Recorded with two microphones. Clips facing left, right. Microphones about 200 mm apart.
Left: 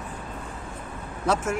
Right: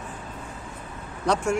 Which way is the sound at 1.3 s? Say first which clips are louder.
Even; 5° left (ahead or behind).